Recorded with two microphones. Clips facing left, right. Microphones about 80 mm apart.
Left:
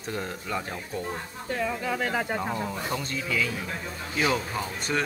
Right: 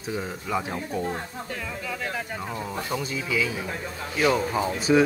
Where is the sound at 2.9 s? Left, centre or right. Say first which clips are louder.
Right 5 dB; centre.